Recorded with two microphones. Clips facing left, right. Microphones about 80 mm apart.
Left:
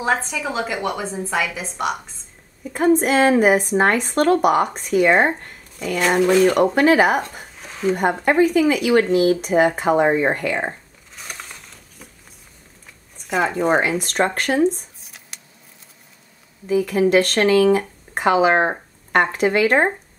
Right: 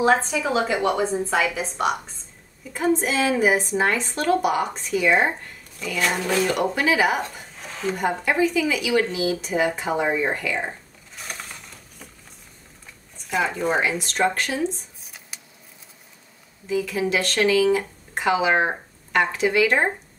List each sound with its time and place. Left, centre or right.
0.0 s a woman's voice: centre
2.7 s speech: left
13.4 s speech: left
16.6 s speech: left